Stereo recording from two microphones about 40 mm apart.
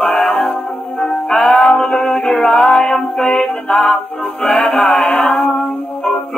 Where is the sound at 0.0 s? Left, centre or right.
Left.